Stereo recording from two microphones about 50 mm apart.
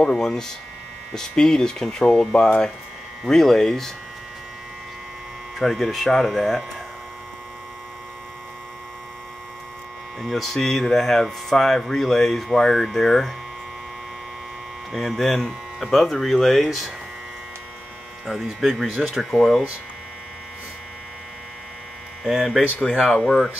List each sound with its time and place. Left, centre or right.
0.0 s speech: centre
5.6 s speech: centre
10.2 s speech: centre
15.0 s speech: centre
18.2 s speech: centre
22.2 s hum: centre
23.2 s speech: centre